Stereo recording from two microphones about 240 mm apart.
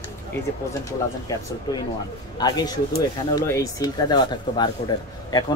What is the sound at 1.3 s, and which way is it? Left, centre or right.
Speech, centre.